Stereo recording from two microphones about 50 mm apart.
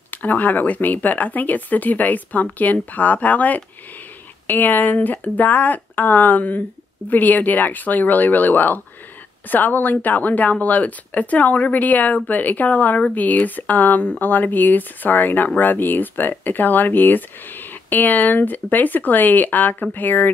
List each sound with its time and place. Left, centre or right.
0.1 s speech: left